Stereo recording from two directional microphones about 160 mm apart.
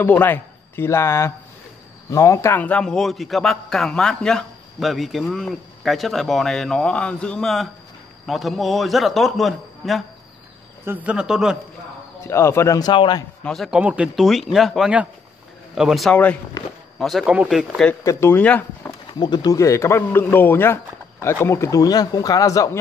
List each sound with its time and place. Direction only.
0.0 s a man's voice: 10° left (ahead or behind); by 11.5 s 5° right (ahead or behind)
12.2 s speech: 15° left (ahead or behind)
13.4 s a man's voice: centre (ahead or behind)
18.0 s speech: 15° left (ahead or behind)
19.1 s speech: 25° left (ahead or behind)